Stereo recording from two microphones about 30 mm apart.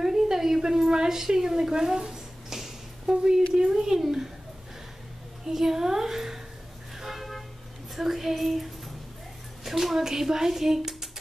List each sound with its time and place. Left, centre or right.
0.0 s a sound: centre
3.1 s a woman's voice: right
5.4 s speech: centre
7.0 s vehicle: centre
7.9 s a sound: centre
9.7 s speech: centre